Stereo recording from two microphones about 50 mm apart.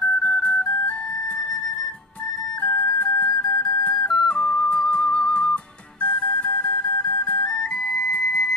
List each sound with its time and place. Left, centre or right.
0.6 s flute: centre
2.6 s music: centre
3.3 s flute: centre
3.9 s music: centre
4.4 s flute: centre
5.0 s music: centre
7.4 s flute: centre
8.2 s music: centre